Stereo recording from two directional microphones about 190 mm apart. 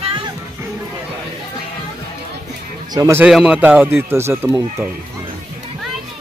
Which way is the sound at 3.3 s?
5° right (ahead or behind).